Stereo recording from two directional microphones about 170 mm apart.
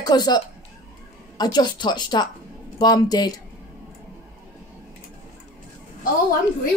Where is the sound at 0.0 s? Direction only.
25° left (ahead or behind).